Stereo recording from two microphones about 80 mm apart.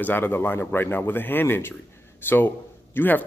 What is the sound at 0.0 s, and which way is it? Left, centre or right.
Speech, left.